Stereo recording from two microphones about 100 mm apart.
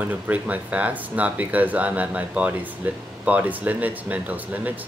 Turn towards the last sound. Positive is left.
turn(degrees=-15)  # may be behind; listen again after turning